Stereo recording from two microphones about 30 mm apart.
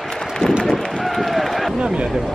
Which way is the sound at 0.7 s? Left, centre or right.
Centre.